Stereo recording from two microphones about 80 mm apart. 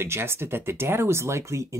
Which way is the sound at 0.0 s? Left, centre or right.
Right.